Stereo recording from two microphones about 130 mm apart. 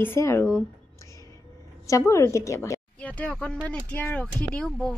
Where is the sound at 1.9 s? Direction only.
25° left (ahead or behind).